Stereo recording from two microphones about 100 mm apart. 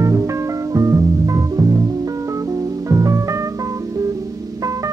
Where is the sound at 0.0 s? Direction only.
30° right (ahead or behind).